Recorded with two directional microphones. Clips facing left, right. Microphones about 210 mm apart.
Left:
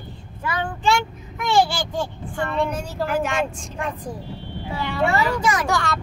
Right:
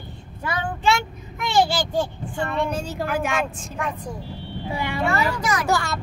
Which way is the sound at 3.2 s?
5° right (ahead or behind).